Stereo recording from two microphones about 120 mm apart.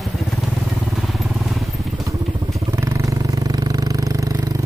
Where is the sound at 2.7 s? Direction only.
25° right (ahead or behind).